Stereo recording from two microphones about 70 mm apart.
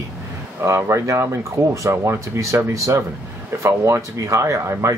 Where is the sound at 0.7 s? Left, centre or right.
Right.